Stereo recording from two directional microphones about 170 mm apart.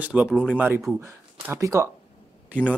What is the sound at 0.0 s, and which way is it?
Speech, 10° right (ahead or behind).